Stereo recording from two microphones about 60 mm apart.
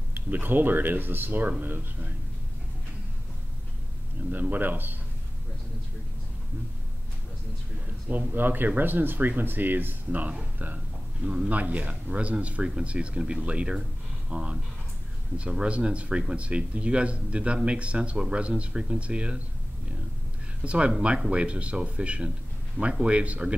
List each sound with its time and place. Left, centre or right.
0.1 s speech: right
4.3 s speech: right
8.1 s speech: right
20.6 s speech: centre